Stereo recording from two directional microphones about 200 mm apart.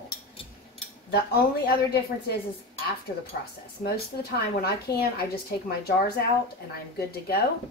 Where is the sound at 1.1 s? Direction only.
50° left (ahead or behind).